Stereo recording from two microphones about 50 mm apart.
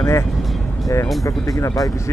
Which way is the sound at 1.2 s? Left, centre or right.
Left.